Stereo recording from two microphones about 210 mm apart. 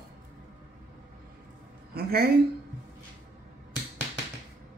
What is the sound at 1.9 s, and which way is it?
Speech, 45° right (ahead or behind).